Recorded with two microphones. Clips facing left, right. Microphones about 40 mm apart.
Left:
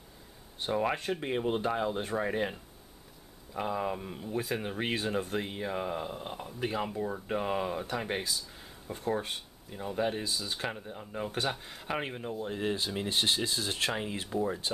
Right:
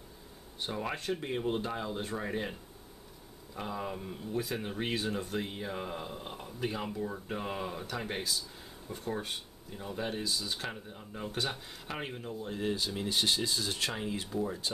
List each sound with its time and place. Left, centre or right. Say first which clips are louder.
0.7 s speech: left 5 dB; centre
3.5 s speech: left 5 dB; centre
5.5 s speech: left 4 dB; centre